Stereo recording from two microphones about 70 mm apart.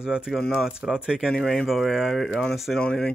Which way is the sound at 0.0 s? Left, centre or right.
Centre.